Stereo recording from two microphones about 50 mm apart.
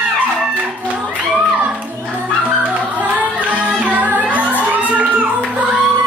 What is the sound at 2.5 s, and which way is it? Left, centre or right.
Music, right.